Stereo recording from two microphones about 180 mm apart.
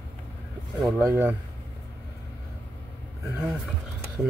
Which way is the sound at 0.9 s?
15° right (ahead or behind).